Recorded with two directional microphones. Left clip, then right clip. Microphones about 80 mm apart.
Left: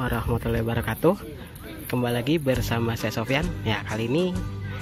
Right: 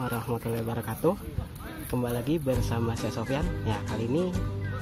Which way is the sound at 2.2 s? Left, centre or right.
Left.